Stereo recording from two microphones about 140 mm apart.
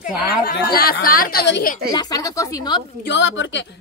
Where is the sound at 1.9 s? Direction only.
25° left (ahead or behind).